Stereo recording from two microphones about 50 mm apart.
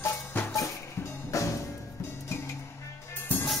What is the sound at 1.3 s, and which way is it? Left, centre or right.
Music, left.